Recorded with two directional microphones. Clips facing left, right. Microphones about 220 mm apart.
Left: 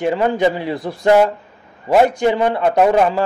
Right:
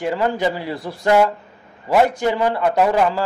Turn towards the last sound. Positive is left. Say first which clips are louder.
# left 3 dB
turn(degrees=20)  # may be behind; listen again after turning